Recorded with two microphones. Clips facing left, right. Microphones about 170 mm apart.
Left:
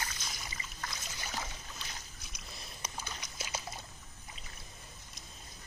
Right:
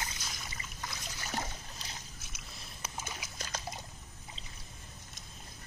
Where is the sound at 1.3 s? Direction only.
45° right (ahead or behind).